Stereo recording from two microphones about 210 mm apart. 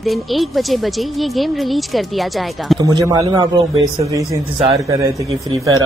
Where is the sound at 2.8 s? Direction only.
15° right (ahead or behind).